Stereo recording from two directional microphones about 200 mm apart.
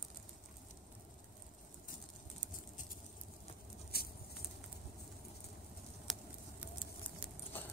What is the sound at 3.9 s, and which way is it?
Patter, 50° left (ahead or behind).